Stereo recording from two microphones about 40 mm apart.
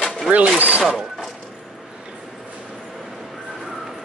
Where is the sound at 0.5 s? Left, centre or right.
Right.